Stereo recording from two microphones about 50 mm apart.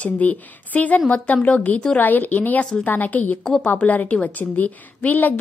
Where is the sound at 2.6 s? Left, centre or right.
Centre.